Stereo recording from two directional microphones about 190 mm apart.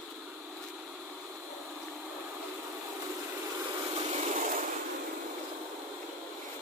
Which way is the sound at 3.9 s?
35° right (ahead or behind).